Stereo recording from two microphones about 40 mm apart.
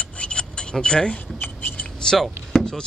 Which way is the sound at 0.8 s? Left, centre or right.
Left.